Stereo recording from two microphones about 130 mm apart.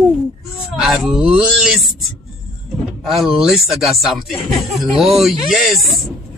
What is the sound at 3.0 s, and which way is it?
Speech, 5° right (ahead or behind).